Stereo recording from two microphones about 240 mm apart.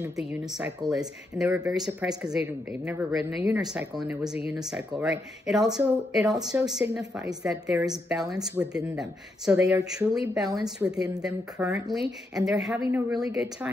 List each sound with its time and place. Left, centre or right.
0.3 s speech: centre
10.4 s a woman's voice: centre
10.9 s speech: centre